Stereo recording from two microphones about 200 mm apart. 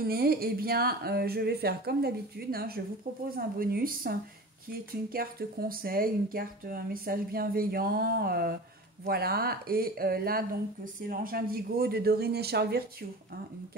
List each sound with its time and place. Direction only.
0.0 s speech: 50° right (ahead or behind)